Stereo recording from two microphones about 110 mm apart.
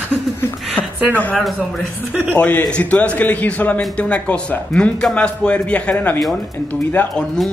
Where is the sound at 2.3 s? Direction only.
10° left (ahead or behind).